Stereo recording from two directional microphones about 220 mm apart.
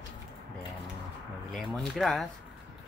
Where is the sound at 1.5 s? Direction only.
Centre (ahead or behind).